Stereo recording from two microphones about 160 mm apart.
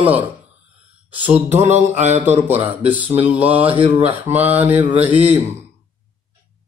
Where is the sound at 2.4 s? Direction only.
10° right (ahead or behind).